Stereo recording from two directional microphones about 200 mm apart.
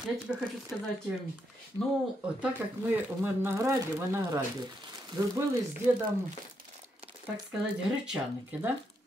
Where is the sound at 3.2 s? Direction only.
10° right (ahead or behind).